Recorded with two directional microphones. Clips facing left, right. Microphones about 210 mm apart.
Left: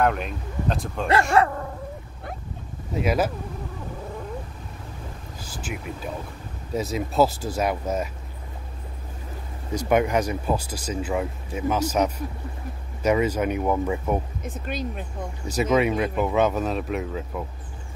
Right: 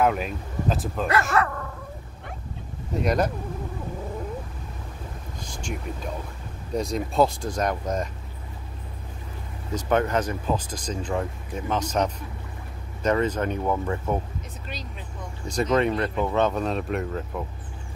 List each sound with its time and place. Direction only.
0.0 s speech: 5° right (ahead or behind)
1.3 s dog: 30° left (ahead or behind)
2.9 s speech: 5° left (ahead or behind)
5.4 s speech: 5° left (ahead or behind)
9.8 s speech: 10° left (ahead or behind)
14.4 s speech: 55° left (ahead or behind)
15.4 s speech: 5° left (ahead or behind)